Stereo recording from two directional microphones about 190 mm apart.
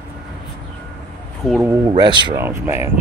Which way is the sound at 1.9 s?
25° right (ahead or behind).